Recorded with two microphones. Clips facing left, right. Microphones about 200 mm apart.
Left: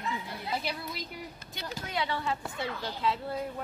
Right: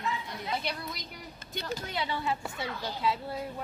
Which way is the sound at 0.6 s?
5° left (ahead or behind).